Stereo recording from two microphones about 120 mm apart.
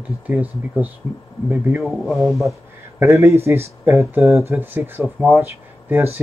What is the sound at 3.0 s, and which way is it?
Speech, 25° right (ahead or behind).